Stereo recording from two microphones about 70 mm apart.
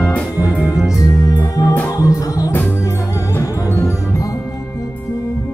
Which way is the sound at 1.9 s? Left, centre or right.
Left.